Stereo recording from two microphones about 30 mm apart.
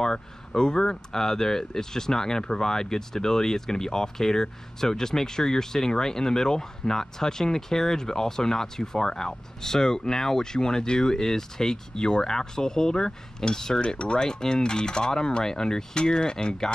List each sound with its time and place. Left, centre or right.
0.0 s speech: left
13.7 s cutlery: left
14.2 s speech: left